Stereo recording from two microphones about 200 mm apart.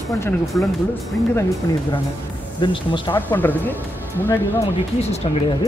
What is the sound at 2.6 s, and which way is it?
Speech, 25° left (ahead or behind).